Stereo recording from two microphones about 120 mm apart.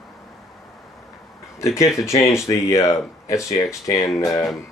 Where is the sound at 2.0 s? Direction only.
25° left (ahead or behind).